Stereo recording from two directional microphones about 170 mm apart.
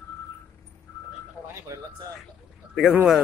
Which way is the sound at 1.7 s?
20° right (ahead or behind).